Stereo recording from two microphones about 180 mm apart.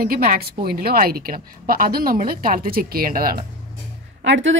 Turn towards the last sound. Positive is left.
turn(degrees=-90)